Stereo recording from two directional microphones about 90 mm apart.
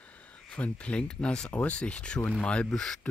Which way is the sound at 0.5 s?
15° left (ahead or behind).